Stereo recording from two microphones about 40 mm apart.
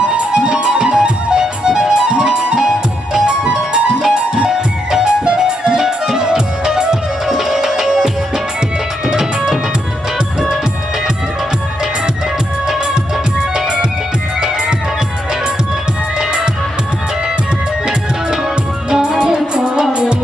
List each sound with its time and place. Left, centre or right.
0.0 s music: right
9.1 s music: centre
12.9 s music: centre
18.9 s music: right